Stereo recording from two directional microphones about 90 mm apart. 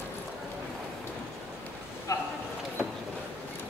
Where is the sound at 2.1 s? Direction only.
40° left (ahead or behind).